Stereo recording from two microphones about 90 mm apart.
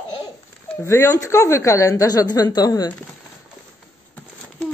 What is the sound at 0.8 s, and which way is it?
A woman's voice, 30° left (ahead or behind).